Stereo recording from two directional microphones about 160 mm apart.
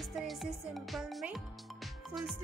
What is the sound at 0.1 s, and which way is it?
Speech, centre (ahead or behind).